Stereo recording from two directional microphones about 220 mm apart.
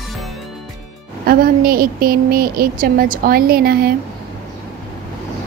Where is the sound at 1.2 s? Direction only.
40° right (ahead or behind).